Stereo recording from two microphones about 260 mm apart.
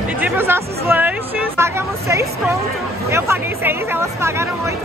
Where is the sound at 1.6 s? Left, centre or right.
Centre.